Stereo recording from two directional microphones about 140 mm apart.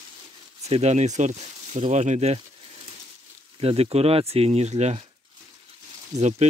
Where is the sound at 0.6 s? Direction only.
50° right (ahead or behind).